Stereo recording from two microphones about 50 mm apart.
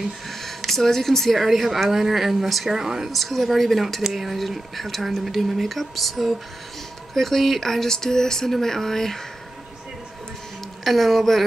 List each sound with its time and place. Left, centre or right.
0.3 s speech: centre
3.1 s speech: centre
10.8 s speech: centre